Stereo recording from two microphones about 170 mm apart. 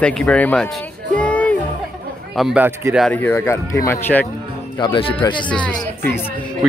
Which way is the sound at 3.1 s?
10° left (ahead or behind).